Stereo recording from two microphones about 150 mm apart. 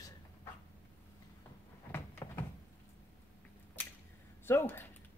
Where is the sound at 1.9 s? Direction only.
15° left (ahead or behind).